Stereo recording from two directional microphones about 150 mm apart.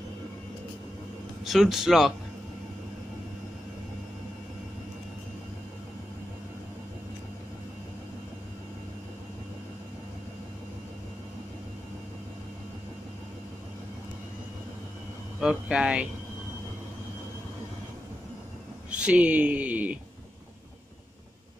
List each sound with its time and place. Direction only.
1.4 s speech: centre (ahead or behind)
15.4 s speech: 5° right (ahead or behind)
18.9 s speech: 10° right (ahead or behind)